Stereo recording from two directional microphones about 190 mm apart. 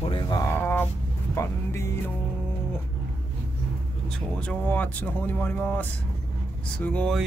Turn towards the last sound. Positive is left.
turn(degrees=5)  # may be behind; listen again after turning